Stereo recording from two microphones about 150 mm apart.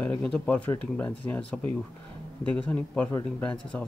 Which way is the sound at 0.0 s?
10° left (ahead or behind).